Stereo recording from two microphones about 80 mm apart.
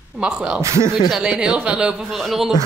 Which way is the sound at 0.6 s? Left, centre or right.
Right.